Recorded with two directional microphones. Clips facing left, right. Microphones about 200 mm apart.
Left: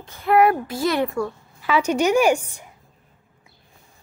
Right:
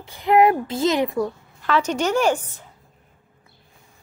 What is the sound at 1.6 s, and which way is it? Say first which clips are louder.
A woman's voice: left 2 dB; 10° left (ahead or behind).